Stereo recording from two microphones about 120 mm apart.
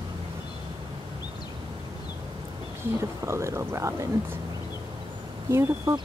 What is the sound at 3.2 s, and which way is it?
Speech, 25° right (ahead or behind).